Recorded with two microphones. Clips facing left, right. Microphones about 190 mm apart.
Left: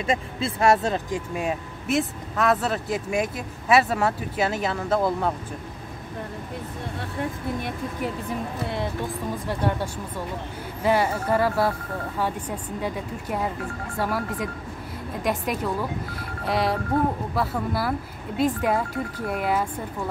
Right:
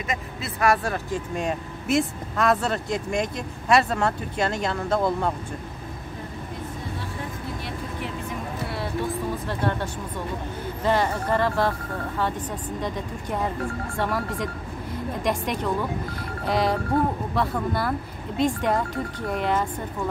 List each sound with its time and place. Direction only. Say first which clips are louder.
0.0 s speech: left 5 dB; 30° left (ahead or behind)
1.3 s speech: even; 5° left (ahead or behind)
9.5 s speech: left 4 dB; 10° left (ahead or behind)